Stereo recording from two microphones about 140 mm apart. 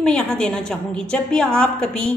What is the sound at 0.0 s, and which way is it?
A woman's voice, 5° left (ahead or behind).